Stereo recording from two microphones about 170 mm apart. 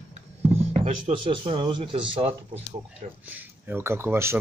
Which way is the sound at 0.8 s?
35° right (ahead or behind).